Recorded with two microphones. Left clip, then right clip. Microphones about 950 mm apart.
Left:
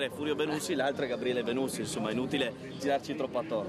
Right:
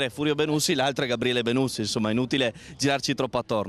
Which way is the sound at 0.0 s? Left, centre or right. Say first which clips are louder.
Right 6 dB; right.